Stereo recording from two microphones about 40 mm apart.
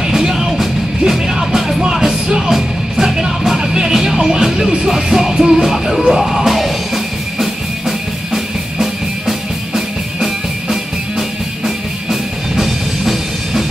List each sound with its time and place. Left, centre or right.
0.0 s music: centre
8.3 s music: centre